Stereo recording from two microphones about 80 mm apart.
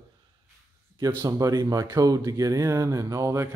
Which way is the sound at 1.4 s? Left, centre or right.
Right.